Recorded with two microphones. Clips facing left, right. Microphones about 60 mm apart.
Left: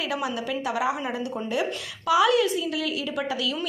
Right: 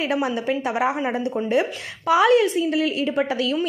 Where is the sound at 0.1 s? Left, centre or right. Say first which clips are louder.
Right 6 dB; right.